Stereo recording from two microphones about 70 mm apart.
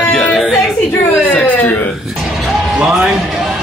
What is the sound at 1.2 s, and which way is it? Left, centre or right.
Speech, left.